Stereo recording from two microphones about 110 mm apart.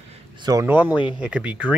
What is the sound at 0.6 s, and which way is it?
Speech, 15° right (ahead or behind).